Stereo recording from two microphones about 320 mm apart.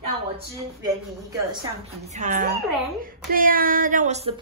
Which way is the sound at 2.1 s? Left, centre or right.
Right.